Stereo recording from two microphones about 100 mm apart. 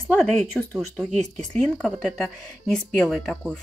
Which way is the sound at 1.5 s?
5° left (ahead or behind).